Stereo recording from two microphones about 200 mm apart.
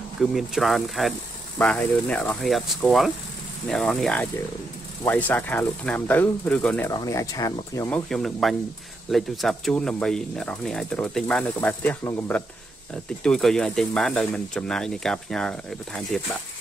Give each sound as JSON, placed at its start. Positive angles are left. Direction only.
{"t": 0.2, "sound": "speech", "side_deg": 0}
{"t": 6.9, "sound": "speech", "side_deg": 15}
{"t": 8.1, "sound": "speech", "side_deg": 0}